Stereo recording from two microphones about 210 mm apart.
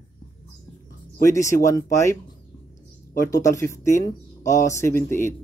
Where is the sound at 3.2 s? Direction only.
15° left (ahead or behind).